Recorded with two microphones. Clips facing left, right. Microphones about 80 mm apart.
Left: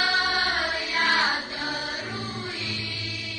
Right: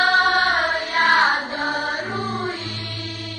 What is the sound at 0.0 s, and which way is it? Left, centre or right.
Music, right.